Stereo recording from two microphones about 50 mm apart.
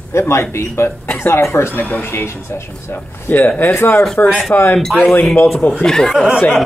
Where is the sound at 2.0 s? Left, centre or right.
Left.